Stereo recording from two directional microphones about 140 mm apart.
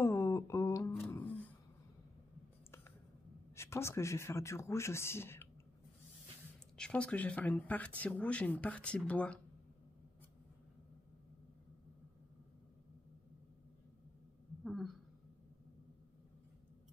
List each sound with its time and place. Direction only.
0.0 s mantra: 20° left (ahead or behind)
1.1 s music: 10° left (ahead or behind)
3.5 s speech: 20° left (ahead or behind)
6.8 s speech: 10° left (ahead or behind)
14.6 s a sound: centre (ahead or behind)